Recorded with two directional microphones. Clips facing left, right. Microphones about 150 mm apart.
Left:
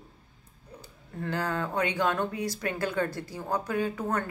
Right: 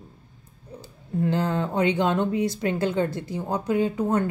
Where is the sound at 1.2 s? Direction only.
25° right (ahead or behind).